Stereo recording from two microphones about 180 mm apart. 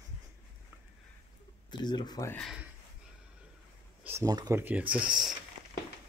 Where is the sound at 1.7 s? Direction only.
25° left (ahead or behind).